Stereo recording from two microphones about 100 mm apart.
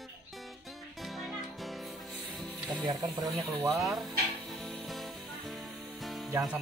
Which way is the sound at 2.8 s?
40° right (ahead or behind).